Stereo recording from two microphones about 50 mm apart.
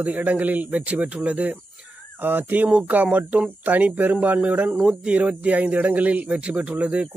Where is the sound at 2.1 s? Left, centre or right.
Right.